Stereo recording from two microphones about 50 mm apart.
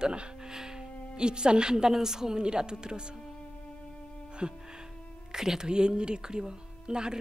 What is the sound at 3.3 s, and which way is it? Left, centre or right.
Music, left.